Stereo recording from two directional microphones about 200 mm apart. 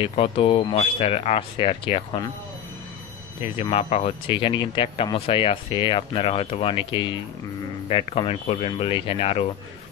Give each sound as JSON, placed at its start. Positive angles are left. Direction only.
{"t": 0.0, "sound": "speech", "side_deg": 25}
{"t": 3.5, "sound": "speech", "side_deg": 30}